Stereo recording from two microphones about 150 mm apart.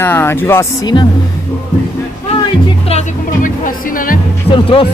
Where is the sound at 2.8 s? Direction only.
50° left (ahead or behind); by 4.1 s 65° left (ahead or behind).